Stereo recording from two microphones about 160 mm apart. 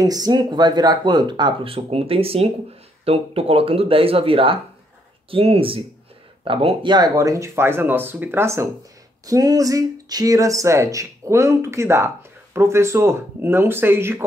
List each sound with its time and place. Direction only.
0.0 s speech: 25° right (ahead or behind)